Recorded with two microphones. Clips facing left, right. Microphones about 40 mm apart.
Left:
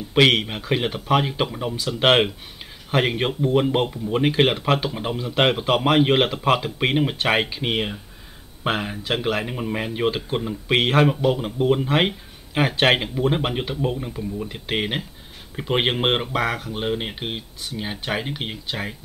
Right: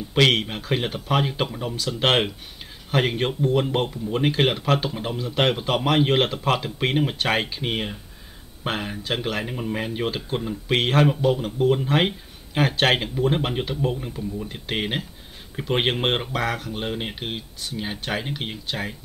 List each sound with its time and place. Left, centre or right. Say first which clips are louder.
0.1 s speech: left 2 dB; centre